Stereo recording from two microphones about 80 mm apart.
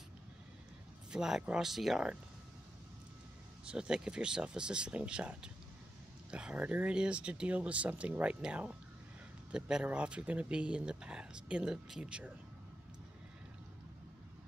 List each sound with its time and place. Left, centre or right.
1.1 s speech: centre
3.6 s speech: centre